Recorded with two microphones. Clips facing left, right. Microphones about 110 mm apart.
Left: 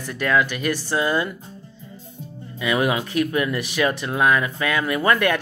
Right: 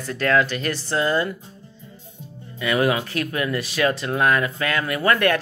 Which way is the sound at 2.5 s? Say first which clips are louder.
Right 1 dB; 15° left (ahead or behind).